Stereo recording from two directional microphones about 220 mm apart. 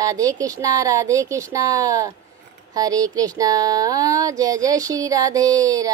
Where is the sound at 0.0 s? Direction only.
15° right (ahead or behind).